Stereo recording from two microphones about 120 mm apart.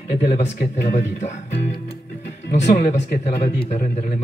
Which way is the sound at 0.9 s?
75° left (ahead or behind).